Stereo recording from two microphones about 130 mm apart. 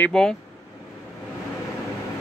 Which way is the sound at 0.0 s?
5° left (ahead or behind).